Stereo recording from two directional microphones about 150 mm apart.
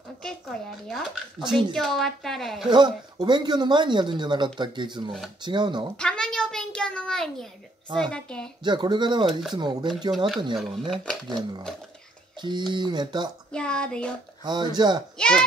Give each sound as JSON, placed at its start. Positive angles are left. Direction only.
{"t": 0.2, "sound": "a woman's voice", "side_deg": 5}
{"t": 2.7, "sound": "speech", "side_deg": -30}
{"t": 5.9, "sound": "a sound", "side_deg": 5}
{"t": 8.0, "sound": "a woman's voice", "side_deg": 5}
{"t": 8.6, "sound": "speech", "side_deg": -30}
{"t": 10.1, "sound": "a woman's voice", "side_deg": 0}
{"t": 11.2, "sound": "speech", "side_deg": -30}
{"t": 13.5, "sound": "speech", "side_deg": 5}
{"t": 14.4, "sound": "speech", "side_deg": -30}
{"t": 15.1, "sound": "a woman's voice", "side_deg": 5}